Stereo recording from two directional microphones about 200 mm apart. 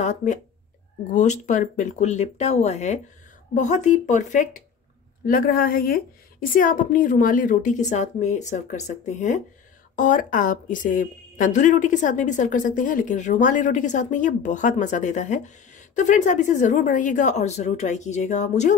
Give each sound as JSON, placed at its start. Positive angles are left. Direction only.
{"t": 0.0, "sound": "a woman's voice", "side_deg": 35}